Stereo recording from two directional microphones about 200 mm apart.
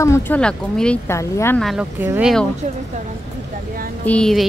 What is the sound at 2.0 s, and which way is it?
Speech, 10° right (ahead or behind).